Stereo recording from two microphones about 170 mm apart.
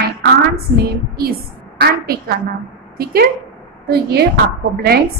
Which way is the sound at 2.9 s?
60° right (ahead or behind).